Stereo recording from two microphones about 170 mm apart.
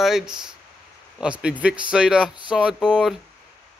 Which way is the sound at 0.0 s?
5° right (ahead or behind).